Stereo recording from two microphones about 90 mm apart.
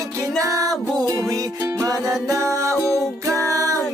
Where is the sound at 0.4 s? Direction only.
40° right (ahead or behind).